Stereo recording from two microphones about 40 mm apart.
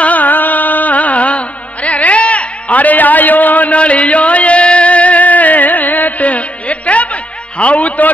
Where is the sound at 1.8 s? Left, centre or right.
Left.